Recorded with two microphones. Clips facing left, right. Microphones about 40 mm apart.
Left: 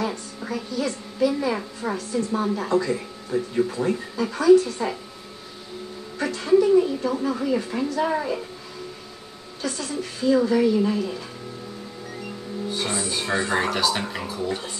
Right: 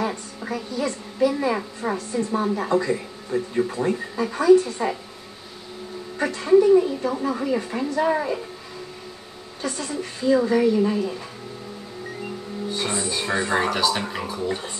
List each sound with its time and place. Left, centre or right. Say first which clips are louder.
0.4 s a sound: even; centre
0.7 s a woman's voice: right 1 dB; centre
6.1 s a woman's voice: right 2 dB; right
6.5 s a woman's voice: right 2 dB; centre
9.6 s a woman's voice: even; centre
12.6 s speech: right 1 dB; centre